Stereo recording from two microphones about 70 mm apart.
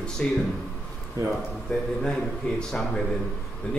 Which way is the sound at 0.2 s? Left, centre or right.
Centre.